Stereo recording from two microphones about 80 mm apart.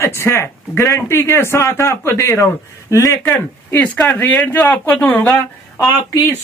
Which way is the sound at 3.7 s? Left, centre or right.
Left.